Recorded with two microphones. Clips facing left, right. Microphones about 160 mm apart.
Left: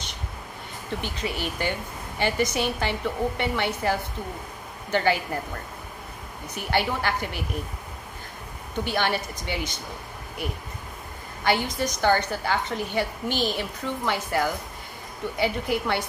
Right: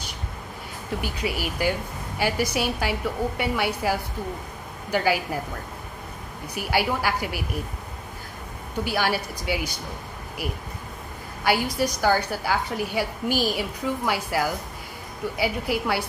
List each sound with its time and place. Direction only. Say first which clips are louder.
1.0 s a woman's voice: right 2 dB; 10° right (ahead or behind)
6.5 s a woman's voice: right 1 dB; 10° right (ahead or behind)
8.8 s a woman's voice: right 1 dB; 5° right (ahead or behind)
11.4 s a woman's voice: right 2 dB; 10° right (ahead or behind)